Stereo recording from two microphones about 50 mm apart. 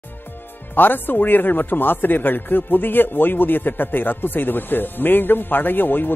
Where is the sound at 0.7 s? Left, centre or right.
Left.